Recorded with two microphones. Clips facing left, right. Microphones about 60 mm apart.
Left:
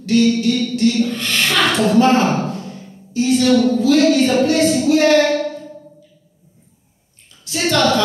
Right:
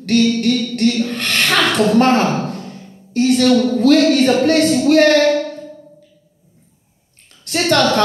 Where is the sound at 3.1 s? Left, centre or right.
Right.